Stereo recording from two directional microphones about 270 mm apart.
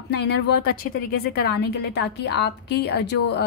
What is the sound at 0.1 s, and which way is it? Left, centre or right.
A woman's voice, left.